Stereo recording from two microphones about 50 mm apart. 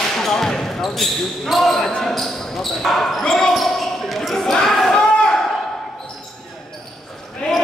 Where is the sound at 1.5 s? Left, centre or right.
Centre.